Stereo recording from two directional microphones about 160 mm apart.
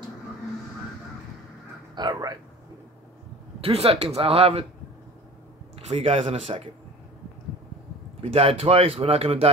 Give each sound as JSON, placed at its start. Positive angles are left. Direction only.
{"t": 2.0, "sound": "speech", "side_deg": -25}
{"t": 3.6, "sound": "speech", "side_deg": -40}
{"t": 5.9, "sound": "speech", "side_deg": -35}
{"t": 8.2, "sound": "speech", "side_deg": -35}